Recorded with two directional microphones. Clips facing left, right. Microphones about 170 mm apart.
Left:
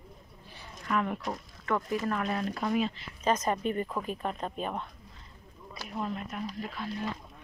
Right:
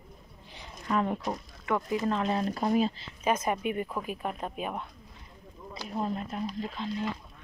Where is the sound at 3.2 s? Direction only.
10° right (ahead or behind).